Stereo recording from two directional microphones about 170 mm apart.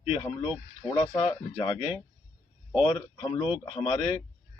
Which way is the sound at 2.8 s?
30° left (ahead or behind).